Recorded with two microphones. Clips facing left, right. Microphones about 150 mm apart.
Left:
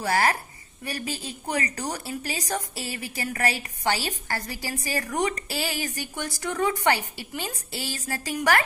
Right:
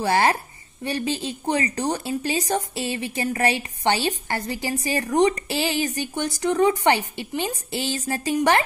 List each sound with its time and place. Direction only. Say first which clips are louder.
0.0 s speech: right 4 dB; 25° right (ahead or behind)